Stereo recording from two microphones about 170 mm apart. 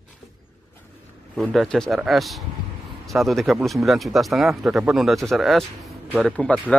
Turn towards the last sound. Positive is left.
turn(degrees=5)  # may be behind; listen again after turning